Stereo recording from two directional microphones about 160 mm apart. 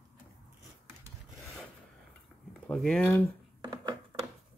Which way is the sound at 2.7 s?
5° left (ahead or behind).